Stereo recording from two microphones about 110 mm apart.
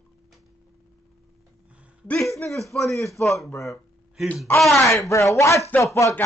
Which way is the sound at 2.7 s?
15° left (ahead or behind).